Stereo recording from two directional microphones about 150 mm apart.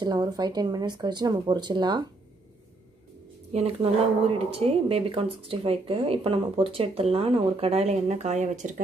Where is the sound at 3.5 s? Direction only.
40° right (ahead or behind).